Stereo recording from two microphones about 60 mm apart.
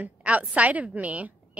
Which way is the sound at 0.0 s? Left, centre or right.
Right.